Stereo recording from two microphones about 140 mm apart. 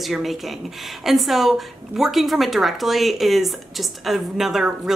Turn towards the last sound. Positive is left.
turn(degrees=0)  # may be behind; listen again after turning